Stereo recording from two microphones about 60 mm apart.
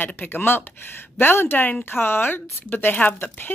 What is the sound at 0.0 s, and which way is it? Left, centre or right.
A woman's voice, left.